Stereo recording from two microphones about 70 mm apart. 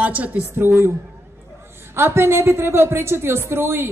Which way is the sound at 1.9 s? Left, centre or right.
Right.